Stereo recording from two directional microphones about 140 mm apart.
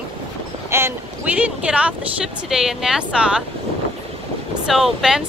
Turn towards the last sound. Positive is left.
turn(degrees=-5)  # may be behind; listen again after turning